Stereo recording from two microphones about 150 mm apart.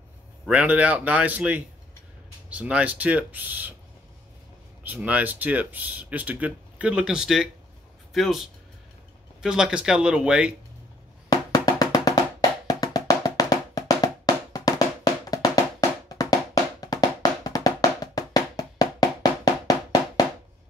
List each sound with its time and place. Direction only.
0.5 s speech: 10° right (ahead or behind)
4.8 s speech: 10° right (ahead or behind)
11.2 s music: 25° left (ahead or behind)